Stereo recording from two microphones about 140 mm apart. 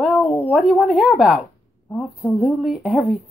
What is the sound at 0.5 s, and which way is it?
A woman's voice, centre (ahead or behind).